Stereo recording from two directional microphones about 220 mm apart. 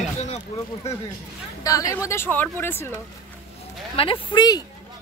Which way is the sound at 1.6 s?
15° left (ahead or behind).